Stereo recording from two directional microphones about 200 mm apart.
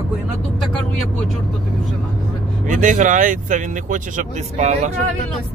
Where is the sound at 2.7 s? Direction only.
40° right (ahead or behind).